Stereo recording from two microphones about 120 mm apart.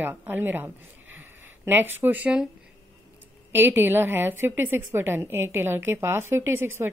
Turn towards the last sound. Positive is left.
turn(degrees=-20)  # may be behind; listen again after turning